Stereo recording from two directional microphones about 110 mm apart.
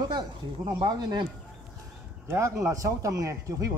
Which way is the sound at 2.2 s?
25° right (ahead or behind).